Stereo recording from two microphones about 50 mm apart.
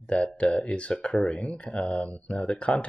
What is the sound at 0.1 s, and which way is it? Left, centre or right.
Speech, left.